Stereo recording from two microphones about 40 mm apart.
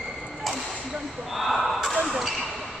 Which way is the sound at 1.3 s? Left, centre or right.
Centre.